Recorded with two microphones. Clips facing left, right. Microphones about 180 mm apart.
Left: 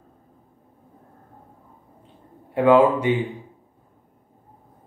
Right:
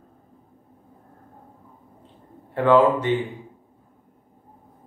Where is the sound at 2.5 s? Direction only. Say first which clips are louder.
Left 1 dB; 10° left (ahead or behind).